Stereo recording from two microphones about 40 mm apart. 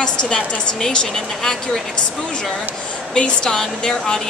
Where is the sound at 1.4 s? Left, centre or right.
Centre.